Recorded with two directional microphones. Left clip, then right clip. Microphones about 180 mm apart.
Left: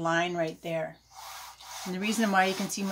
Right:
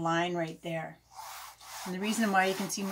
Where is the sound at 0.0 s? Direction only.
35° left (ahead or behind).